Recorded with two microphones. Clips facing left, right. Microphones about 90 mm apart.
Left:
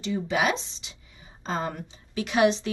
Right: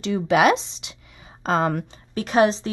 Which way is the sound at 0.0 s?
75° right (ahead or behind).